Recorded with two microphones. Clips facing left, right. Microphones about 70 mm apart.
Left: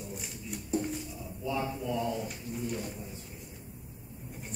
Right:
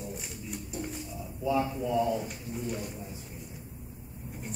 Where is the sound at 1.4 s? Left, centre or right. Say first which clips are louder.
Right 5 dB; centre.